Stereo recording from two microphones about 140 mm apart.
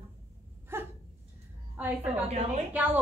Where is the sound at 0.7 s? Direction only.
15° right (ahead or behind).